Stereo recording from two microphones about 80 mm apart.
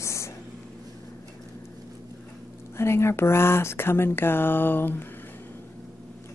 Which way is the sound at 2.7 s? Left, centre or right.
Left.